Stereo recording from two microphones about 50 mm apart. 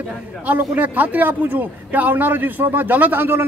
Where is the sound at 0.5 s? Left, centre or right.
Right.